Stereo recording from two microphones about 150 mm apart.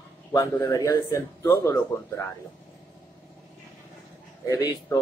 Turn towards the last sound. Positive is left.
turn(degrees=25)  # may be behind; listen again after turning